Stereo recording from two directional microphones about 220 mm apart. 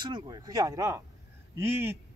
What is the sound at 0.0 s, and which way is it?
Speech, 20° right (ahead or behind).